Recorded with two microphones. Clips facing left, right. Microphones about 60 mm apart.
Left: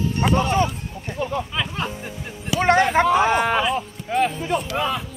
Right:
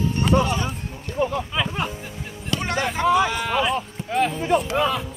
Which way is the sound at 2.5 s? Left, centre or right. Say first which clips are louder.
Left 5 dB; centre.